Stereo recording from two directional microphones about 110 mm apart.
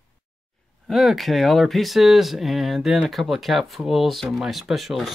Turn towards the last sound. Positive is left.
turn(degrees=0)  # may be behind; listen again after turning